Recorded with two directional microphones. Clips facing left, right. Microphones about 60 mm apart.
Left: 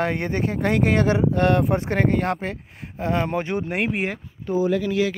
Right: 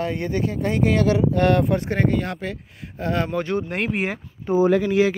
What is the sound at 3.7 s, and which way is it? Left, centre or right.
Speech, centre.